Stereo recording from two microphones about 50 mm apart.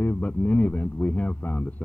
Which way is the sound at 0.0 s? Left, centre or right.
Left.